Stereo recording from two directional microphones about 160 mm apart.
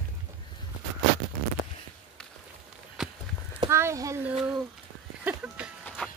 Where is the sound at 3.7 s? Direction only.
15° right (ahead or behind).